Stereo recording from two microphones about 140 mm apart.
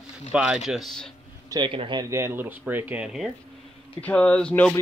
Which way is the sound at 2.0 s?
20° right (ahead or behind).